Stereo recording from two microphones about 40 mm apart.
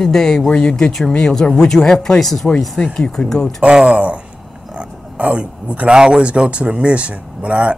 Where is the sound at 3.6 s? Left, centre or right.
Right.